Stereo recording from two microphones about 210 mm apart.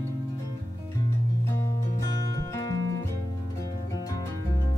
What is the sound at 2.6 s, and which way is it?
Music, 15° left (ahead or behind).